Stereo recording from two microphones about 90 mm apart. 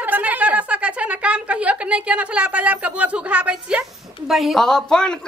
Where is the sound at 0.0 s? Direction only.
20° right (ahead or behind).